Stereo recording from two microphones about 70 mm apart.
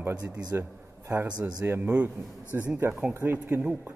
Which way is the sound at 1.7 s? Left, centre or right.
Right.